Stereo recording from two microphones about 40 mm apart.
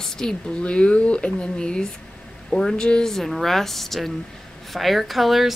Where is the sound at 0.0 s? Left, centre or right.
Centre.